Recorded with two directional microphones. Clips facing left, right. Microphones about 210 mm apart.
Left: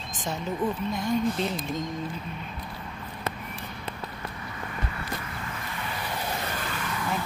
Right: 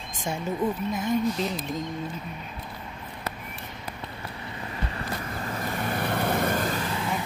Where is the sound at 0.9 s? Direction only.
5° right (ahead or behind).